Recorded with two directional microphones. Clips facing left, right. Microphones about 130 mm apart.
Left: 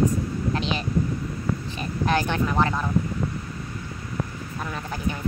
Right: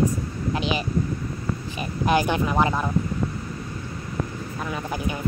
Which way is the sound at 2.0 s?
10° right (ahead or behind).